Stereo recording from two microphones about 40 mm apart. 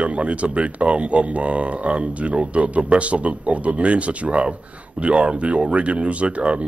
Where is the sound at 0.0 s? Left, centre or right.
Right.